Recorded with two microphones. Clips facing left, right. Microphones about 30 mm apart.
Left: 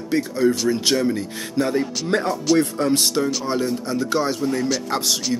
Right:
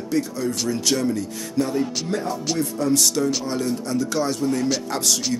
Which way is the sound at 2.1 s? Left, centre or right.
Left.